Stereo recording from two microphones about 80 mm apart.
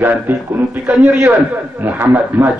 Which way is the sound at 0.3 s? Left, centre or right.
Right.